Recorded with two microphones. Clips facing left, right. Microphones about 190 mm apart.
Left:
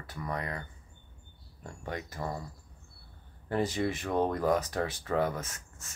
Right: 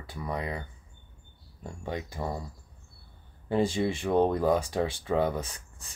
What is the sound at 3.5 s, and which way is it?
Speech, 25° right (ahead or behind).